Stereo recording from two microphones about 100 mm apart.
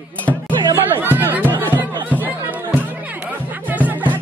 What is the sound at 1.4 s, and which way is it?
Speech, 20° left (ahead or behind).